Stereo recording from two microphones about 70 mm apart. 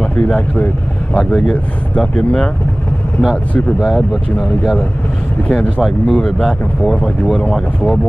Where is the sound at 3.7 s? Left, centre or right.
Centre.